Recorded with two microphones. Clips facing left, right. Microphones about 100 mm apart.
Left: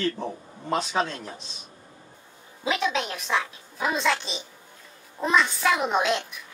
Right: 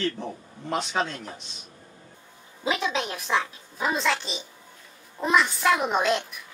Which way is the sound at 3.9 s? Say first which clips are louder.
Left 1 dB; centre (ahead or behind).